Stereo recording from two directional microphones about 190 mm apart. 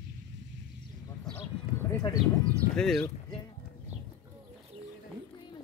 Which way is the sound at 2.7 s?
5° left (ahead or behind).